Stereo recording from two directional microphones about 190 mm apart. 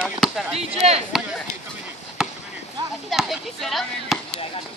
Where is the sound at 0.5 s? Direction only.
35° right (ahead or behind).